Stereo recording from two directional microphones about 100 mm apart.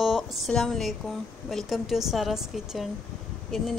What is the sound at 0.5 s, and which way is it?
Speech, 5° left (ahead or behind).